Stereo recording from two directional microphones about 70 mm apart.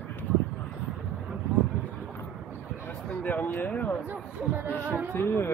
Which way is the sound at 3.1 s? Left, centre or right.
Left.